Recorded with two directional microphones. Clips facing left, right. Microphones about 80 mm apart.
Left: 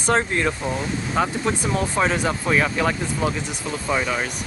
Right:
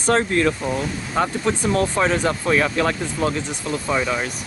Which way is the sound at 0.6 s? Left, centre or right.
Centre.